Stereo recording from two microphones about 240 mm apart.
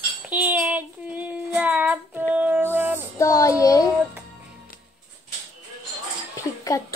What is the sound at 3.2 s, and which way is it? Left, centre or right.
Speech, centre.